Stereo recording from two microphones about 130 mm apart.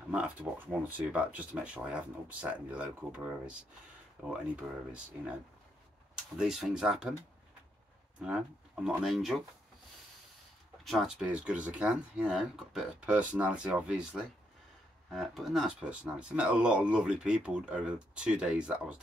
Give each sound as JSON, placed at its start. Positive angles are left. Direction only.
{"t": 0.1, "sound": "speech", "side_deg": -10}
{"t": 6.3, "sound": "speech", "side_deg": -5}
{"t": 8.8, "sound": "speech", "side_deg": 0}
{"t": 10.8, "sound": "speech", "side_deg": 0}